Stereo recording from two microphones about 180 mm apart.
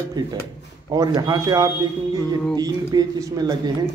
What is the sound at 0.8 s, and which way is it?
Speech, 20° right (ahead or behind).